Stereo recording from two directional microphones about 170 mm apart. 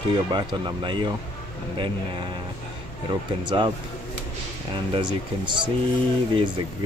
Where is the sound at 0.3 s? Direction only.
25° right (ahead or behind).